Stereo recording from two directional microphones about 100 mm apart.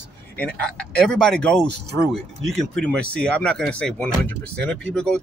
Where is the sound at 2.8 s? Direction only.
10° left (ahead or behind).